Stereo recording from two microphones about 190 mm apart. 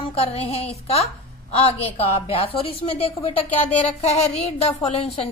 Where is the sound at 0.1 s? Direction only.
30° left (ahead or behind).